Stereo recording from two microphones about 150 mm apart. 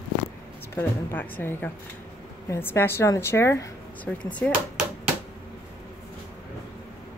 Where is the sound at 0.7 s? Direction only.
10° left (ahead or behind).